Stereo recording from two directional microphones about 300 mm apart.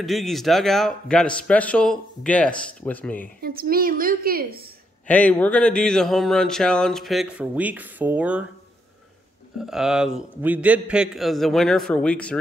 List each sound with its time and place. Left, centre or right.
0.0 s speech: centre
3.3 s a woman's voice: right
5.0 s speech: centre
9.6 s speech: centre